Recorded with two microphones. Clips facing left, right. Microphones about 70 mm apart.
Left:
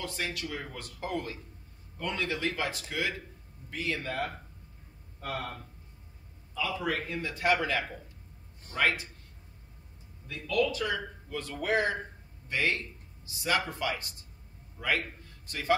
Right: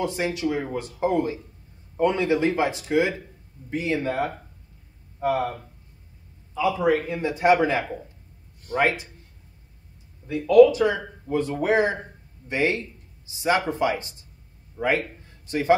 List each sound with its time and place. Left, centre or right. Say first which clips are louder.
0.0 s a man's voice: right 11 dB; right
10.2 s a man's voice: right 15 dB; right